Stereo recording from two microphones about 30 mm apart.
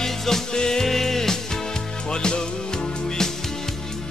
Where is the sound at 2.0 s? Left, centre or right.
Left.